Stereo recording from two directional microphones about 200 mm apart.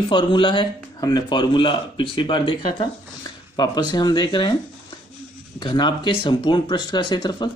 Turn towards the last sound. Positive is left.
turn(degrees=20)  # may be behind; listen again after turning